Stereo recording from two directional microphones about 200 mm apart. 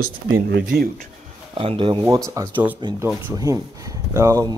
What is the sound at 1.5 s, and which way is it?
Speech, 25° right (ahead or behind).